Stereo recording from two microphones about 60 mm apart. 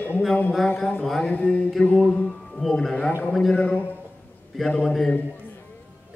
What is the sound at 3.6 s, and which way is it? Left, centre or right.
Speech, left.